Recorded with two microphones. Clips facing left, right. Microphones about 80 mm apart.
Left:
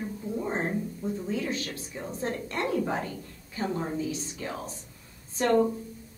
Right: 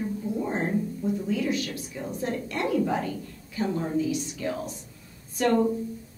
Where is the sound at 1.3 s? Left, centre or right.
Left.